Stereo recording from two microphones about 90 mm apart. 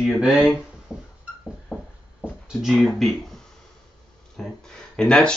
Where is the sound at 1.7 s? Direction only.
30° left (ahead or behind).